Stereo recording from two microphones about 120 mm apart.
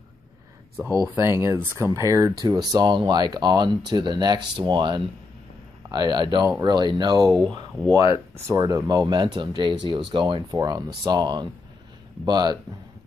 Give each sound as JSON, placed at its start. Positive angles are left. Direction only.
{"t": 0.7, "sound": "speech", "side_deg": -25}
{"t": 8.5, "sound": "speech", "side_deg": -25}